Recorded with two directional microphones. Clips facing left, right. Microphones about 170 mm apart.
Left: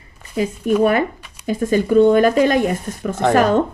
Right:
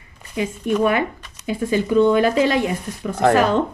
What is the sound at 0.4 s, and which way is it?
Speech, 35° left (ahead or behind).